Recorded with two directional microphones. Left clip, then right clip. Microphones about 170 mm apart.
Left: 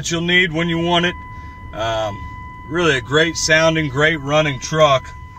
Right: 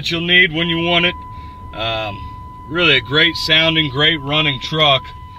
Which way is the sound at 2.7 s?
20° left (ahead or behind).